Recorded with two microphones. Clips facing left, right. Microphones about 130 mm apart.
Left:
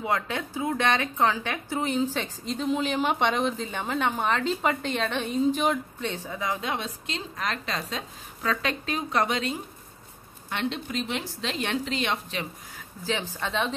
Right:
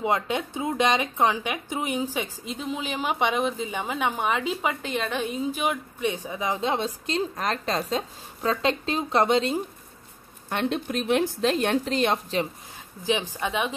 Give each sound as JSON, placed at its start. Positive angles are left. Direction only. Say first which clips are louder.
{"t": 0.0, "sound": "a woman's voice", "louder": "right 3 dB", "side_deg": -20}
{"t": 7.1, "sound": "a woman's voice", "louder": "right 5 dB", "side_deg": -40}
{"t": 10.5, "sound": "speech", "louder": "right 4 dB", "side_deg": -45}
{"t": 13.0, "sound": "a woman's voice", "louder": "right 4 dB", "side_deg": -15}